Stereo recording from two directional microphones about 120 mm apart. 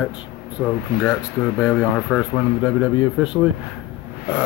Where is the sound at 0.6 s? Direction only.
10° left (ahead or behind).